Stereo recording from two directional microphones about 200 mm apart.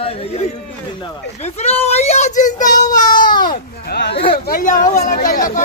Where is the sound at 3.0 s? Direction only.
20° left (ahead or behind).